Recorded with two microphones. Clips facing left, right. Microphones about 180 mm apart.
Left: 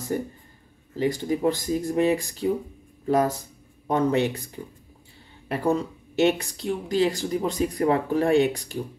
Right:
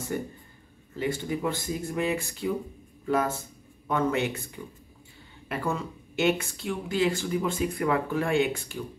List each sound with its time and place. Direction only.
0.1 s speech: 40° left (ahead or behind)